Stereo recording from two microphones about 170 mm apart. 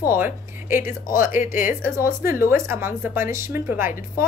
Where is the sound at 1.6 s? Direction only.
10° right (ahead or behind).